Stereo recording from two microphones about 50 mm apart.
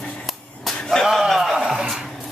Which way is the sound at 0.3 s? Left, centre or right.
Centre.